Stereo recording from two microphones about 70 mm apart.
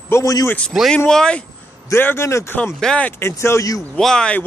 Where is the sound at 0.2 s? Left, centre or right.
Left.